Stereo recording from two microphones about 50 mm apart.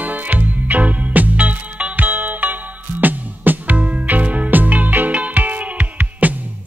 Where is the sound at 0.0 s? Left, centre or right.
Right.